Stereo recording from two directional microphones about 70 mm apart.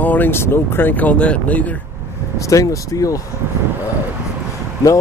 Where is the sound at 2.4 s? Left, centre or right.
Left.